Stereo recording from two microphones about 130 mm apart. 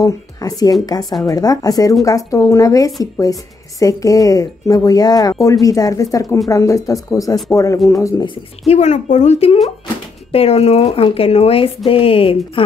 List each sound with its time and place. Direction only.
0.0 s speech: 25° left (ahead or behind)
8.6 s a woman's voice: 60° left (ahead or behind); by 12.7 s 40° left (ahead or behind)